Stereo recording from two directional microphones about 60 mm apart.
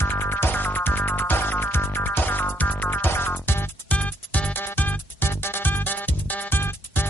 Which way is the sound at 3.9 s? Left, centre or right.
Left.